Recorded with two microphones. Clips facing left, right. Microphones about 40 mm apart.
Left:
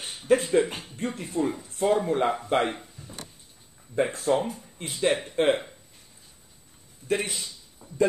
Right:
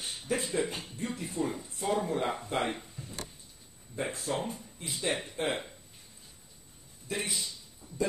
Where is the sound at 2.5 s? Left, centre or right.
Left.